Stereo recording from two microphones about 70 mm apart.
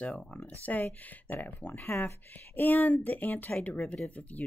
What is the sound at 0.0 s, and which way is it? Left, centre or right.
Speech, centre.